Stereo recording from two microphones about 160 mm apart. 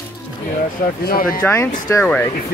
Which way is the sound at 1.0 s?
65° left (ahead or behind).